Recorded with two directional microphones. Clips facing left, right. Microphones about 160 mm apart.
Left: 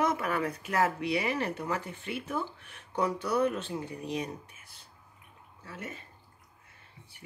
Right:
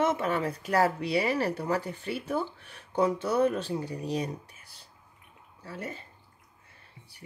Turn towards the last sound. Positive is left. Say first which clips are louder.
# right 4 dB
turn(degrees=-35)  # may be behind; listen again after turning